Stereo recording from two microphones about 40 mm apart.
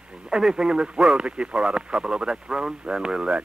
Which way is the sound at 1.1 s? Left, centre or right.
Right.